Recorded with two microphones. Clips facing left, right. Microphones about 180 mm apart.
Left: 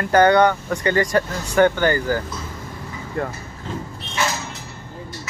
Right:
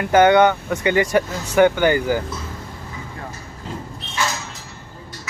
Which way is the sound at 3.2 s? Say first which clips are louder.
Left 12 dB; 65° left (ahead or behind).